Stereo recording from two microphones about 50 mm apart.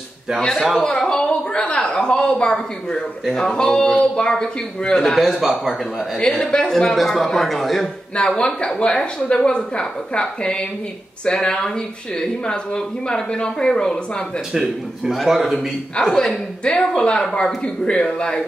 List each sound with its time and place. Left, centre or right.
0.4 s a woman's voice: centre
4.9 s a man's voice: centre
6.4 s a man's voice: centre
8.2 s speech: centre
14.5 s a man's voice: centre
16.6 s speech: centre